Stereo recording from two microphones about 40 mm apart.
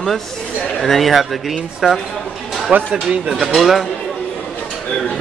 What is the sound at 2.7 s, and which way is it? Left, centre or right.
Speech, right.